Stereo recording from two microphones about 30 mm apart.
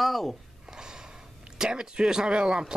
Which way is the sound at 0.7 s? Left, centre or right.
Right.